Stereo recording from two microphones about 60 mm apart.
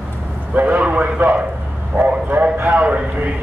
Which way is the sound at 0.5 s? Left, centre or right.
Right.